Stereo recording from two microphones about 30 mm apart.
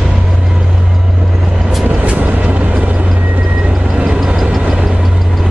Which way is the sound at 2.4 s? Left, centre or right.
Right.